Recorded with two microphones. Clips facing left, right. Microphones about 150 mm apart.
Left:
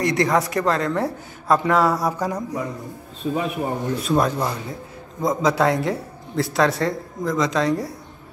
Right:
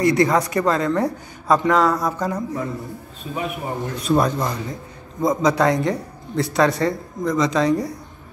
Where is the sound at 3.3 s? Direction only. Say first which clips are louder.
Left 6 dB; 50° left (ahead or behind).